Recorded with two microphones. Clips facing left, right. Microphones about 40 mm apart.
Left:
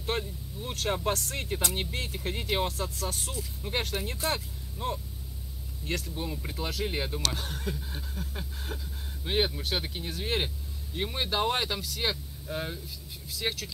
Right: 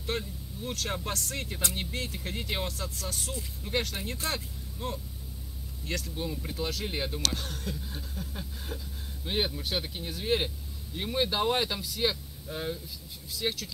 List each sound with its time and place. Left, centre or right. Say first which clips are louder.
0.1 s vehicle: even; left
0.6 s speech: left 3 dB; centre
1.1 s speech: left 3 dB; left
2.7 s speech: left 3 dB; left
3.6 s speech: even; centre
6.1 s speech: right 1 dB; centre
7.3 s speech: left 2 dB; left